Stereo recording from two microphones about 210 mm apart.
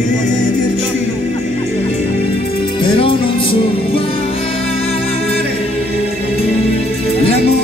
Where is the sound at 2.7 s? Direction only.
25° left (ahead or behind).